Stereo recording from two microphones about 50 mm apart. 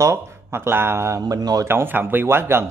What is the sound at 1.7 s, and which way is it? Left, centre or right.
Speech, right.